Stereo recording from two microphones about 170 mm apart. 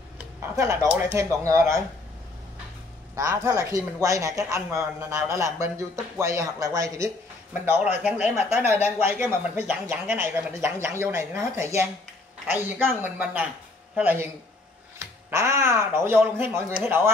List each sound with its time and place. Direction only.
0.4 s speech: 15° right (ahead or behind)
3.2 s speech: 20° right (ahead or behind)
7.6 s speech: 10° right (ahead or behind)
15.3 s speech: 15° right (ahead or behind)